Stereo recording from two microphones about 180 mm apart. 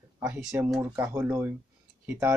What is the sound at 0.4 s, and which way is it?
Speech, 5° right (ahead or behind).